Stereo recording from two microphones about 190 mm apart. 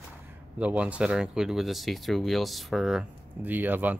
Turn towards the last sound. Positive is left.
turn(degrees=-10)  # may be behind; listen again after turning